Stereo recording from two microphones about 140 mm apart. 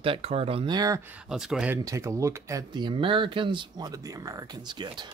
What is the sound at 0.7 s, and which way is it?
Speech, 25° right (ahead or behind).